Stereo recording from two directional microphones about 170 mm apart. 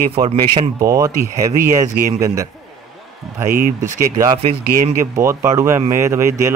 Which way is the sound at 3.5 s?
55° right (ahead or behind).